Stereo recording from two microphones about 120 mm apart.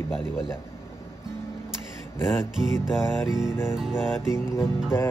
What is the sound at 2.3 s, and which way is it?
Music, 5° right (ahead or behind).